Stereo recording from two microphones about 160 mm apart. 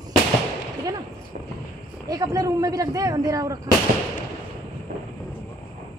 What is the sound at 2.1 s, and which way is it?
Speech, 20° right (ahead or behind).